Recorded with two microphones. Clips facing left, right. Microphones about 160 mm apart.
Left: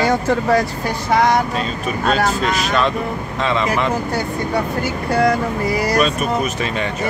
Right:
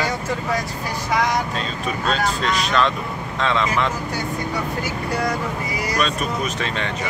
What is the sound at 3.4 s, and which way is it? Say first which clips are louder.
Speech: left 1 dB; 5° left (ahead or behind).